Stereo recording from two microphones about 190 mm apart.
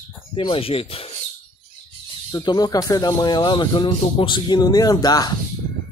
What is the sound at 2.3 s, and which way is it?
Speech, 20° left (ahead or behind).